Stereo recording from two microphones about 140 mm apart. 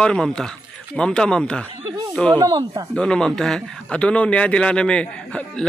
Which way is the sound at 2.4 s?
30° right (ahead or behind).